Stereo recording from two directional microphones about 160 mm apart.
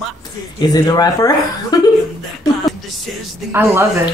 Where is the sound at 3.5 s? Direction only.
15° right (ahead or behind).